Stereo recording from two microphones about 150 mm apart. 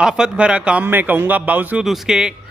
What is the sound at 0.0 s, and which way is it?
A man's voice, 5° right (ahead or behind).